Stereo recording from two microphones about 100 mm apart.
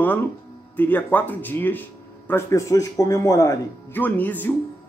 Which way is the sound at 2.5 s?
30° left (ahead or behind).